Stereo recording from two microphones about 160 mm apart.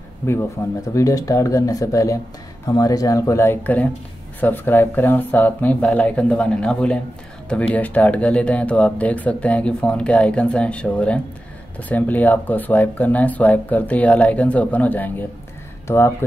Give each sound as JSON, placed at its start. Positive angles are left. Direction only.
{"t": 0.9, "sound": "speech", "side_deg": 20}